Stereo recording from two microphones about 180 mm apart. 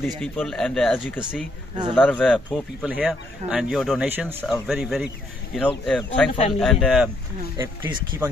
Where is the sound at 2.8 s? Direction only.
5° right (ahead or behind).